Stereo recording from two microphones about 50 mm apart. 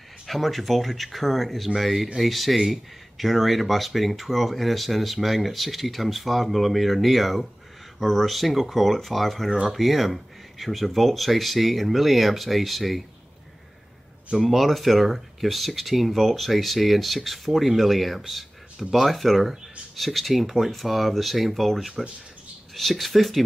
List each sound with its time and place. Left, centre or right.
0.3 s speech: centre
14.3 s speech: centre